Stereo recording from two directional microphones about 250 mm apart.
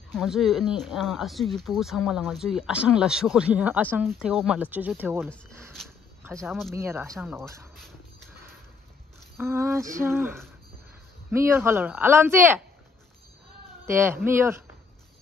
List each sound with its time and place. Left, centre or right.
0.1 s speech: centre
5.8 s a sound: centre
6.7 s speech: centre
9.4 s speech: centre
13.8 s speech: centre